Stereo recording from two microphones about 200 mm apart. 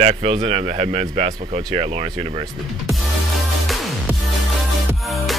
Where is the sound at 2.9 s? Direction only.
Centre (ahead or behind).